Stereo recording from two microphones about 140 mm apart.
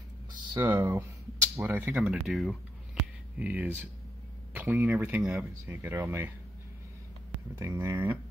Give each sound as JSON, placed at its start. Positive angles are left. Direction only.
{"t": 0.6, "sound": "speech", "side_deg": -15}
{"t": 2.0, "sound": "speech", "side_deg": 0}
{"t": 7.5, "sound": "speech", "side_deg": -25}